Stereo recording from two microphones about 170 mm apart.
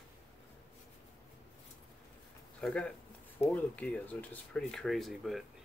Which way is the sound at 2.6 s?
5° left (ahead or behind).